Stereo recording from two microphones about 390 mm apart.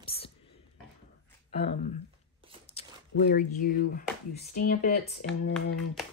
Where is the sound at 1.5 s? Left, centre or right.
Centre.